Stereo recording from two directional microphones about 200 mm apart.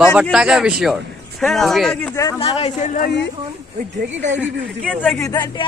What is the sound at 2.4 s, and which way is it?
Speech, 30° left (ahead or behind).